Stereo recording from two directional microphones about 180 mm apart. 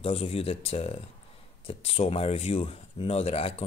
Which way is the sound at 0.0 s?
30° left (ahead or behind).